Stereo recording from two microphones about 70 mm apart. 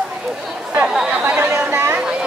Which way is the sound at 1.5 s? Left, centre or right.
Right.